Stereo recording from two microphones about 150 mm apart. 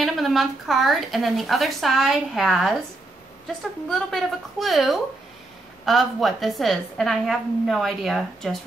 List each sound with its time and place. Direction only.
0.0 s a woman's voice: centre (ahead or behind)
3.9 s a woman's voice: centre (ahead or behind)